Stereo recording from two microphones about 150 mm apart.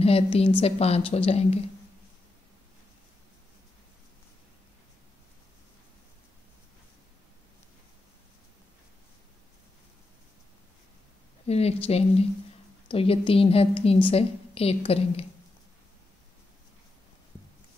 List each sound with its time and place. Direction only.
0.0 s a woman's voice: 40° left (ahead or behind)
11.4 s a woman's voice: 45° left (ahead or behind)